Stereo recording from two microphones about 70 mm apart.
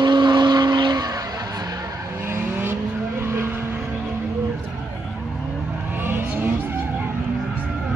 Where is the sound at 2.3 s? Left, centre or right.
Right.